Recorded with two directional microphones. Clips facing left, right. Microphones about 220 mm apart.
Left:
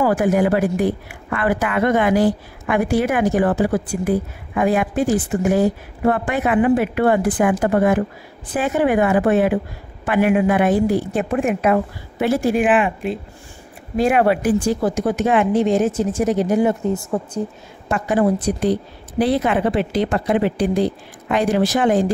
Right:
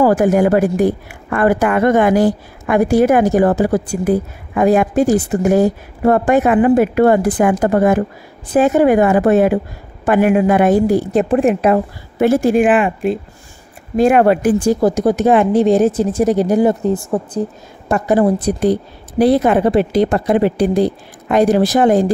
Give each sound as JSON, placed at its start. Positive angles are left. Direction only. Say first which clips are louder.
{"t": 0.0, "sound": "a woman's voice", "louder": "right 5 dB", "side_deg": -45}